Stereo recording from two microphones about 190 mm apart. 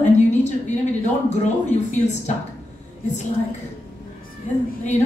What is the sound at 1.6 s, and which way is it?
Speech, 40° left (ahead or behind).